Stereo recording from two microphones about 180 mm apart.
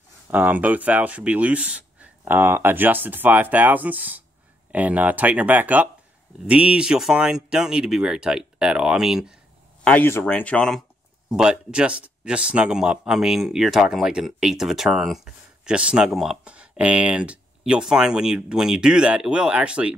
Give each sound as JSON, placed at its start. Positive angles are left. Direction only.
{"t": 0.3, "sound": "speech", "side_deg": -10}
{"t": 9.8, "sound": "speech", "side_deg": 10}